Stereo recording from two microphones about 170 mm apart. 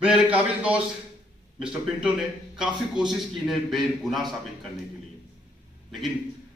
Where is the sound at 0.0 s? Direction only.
5° right (ahead or behind).